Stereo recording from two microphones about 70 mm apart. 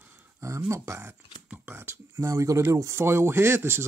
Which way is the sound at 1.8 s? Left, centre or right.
Right.